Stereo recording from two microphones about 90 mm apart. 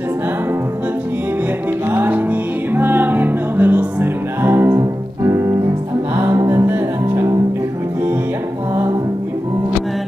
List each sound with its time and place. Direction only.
1.9 s music: 25° right (ahead or behind)